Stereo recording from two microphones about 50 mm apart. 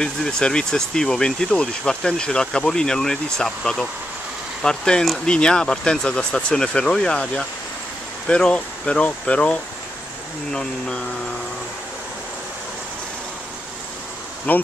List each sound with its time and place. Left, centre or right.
0.0 s speech: centre
10.5 s speech: centre
14.5 s speech: left